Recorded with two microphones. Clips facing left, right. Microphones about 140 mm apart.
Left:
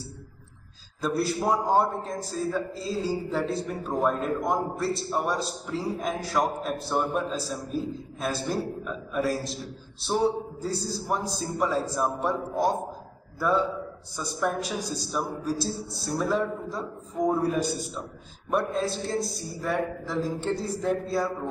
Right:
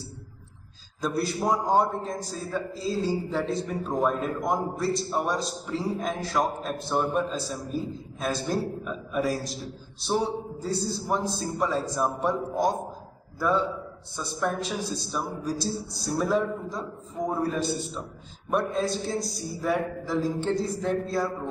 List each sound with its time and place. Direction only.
1.0 s a man's voice: 5° left (ahead or behind)
14.1 s a man's voice: 5° left (ahead or behind)